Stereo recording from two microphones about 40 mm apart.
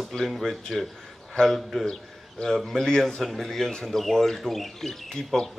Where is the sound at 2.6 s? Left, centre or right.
Centre.